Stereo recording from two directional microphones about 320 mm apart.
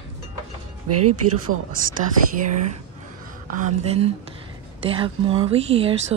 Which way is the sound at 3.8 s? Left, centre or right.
Centre.